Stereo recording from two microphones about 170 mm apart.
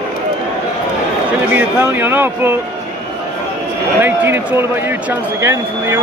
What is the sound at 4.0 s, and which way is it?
Speech, 15° right (ahead or behind).